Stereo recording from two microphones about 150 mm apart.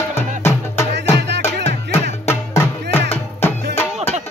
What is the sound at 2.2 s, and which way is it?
Music, 15° left (ahead or behind).